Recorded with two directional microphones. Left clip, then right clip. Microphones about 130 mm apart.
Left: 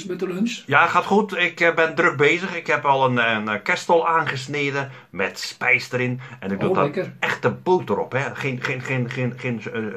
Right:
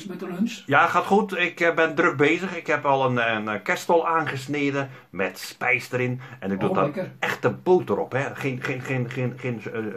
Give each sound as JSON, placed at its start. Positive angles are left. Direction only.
{"t": 0.7, "sound": "speech", "side_deg": -35}